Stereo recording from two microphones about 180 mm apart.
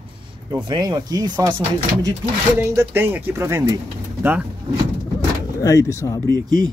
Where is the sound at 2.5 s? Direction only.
15° right (ahead or behind).